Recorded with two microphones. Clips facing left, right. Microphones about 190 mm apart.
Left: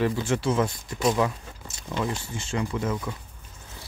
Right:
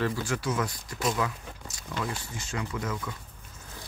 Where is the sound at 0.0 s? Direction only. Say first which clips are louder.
Left 5 dB; 25° left (ahead or behind).